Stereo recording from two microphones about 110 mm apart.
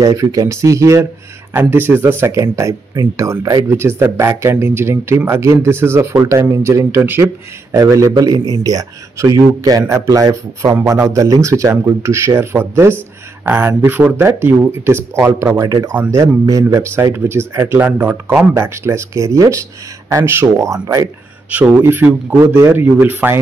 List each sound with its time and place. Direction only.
0.0 s a man's voice: 30° right (ahead or behind); by 18.5 s 15° right (ahead or behind)
18.5 s a man's voice: 25° right (ahead or behind)
21.5 s speech: 15° right (ahead or behind)